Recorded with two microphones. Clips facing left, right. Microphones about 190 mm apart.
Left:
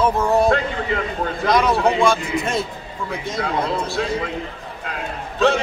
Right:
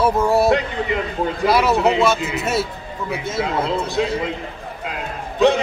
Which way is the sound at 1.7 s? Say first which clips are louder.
Right 1 dB; 20° right (ahead or behind).